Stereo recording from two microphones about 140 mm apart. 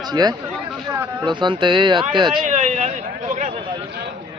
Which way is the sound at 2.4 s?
55° right (ahead or behind).